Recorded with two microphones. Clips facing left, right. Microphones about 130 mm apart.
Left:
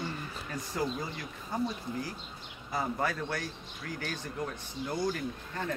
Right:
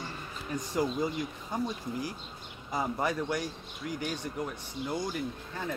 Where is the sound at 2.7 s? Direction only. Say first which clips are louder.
Right 1 dB; 20° right (ahead or behind).